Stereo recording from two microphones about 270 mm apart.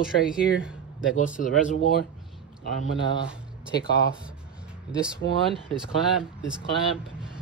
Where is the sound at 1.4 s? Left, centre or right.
Left.